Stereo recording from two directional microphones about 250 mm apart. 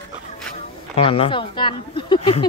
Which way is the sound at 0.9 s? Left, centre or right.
Left.